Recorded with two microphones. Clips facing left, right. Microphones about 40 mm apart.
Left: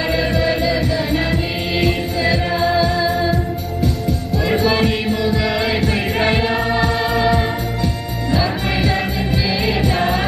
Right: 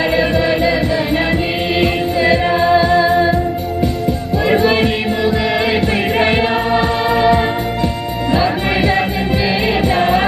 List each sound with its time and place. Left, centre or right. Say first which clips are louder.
0.5 s music: right 3 dB; right
2.3 s music: right 6 dB; right
2.8 s music: right 5 dB; centre
4.6 s music: right 1 dB; right
6.3 s music: right 3 dB; right